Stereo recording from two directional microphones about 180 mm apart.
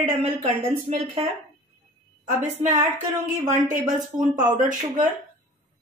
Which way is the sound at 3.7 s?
45° right (ahead or behind).